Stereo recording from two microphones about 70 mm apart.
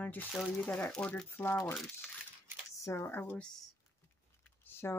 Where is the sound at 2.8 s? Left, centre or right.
Left.